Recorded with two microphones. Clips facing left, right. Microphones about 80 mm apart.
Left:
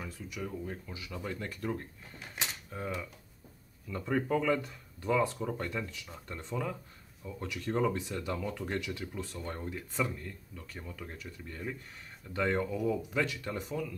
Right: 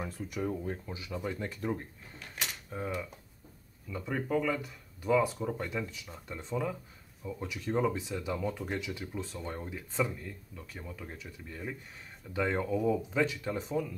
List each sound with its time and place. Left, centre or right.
0.3 s speech: right
1.1 s speech: centre